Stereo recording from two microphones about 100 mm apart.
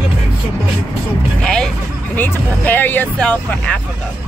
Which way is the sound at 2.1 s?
20° left (ahead or behind).